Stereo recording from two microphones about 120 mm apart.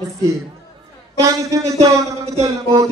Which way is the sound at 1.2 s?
25° right (ahead or behind).